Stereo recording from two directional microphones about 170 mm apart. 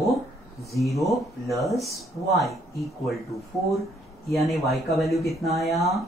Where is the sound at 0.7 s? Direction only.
Centre (ahead or behind).